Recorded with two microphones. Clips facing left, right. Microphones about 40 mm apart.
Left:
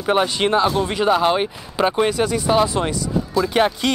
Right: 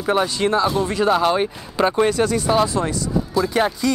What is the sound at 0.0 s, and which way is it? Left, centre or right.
Speech, left.